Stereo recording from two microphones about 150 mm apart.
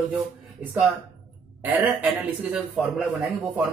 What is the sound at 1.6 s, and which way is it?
A man's voice, 10° right (ahead or behind).